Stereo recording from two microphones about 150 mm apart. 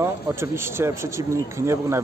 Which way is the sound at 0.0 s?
15° right (ahead or behind).